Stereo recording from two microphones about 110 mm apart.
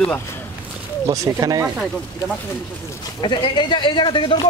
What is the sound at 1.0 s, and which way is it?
Speech, 30° right (ahead or behind).